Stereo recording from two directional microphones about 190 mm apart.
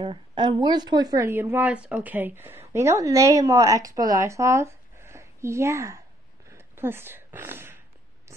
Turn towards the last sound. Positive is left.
turn(degrees=-10)  # may be behind; listen again after turning